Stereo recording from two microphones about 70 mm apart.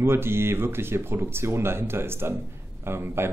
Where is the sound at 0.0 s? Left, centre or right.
Right.